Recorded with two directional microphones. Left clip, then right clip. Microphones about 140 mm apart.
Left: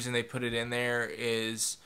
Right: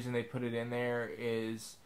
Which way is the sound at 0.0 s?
15° left (ahead or behind).